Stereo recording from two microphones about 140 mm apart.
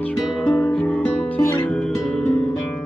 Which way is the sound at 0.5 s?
10° left (ahead or behind).